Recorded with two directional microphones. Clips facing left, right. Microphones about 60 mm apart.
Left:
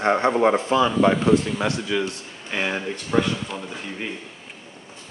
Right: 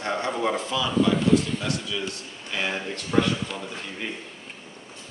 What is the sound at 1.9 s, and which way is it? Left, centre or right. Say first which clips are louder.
Speech: left 7 dB; left.